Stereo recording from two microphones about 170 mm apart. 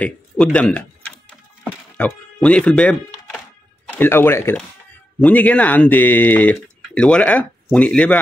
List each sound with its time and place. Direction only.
0.0 s speech: 5° left (ahead or behind)
1.6 s a sound: 10° left (ahead or behind)
3.9 s speech: 10° left (ahead or behind)